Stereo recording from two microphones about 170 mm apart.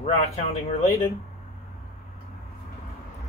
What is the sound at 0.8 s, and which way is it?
Speech, 15° left (ahead or behind).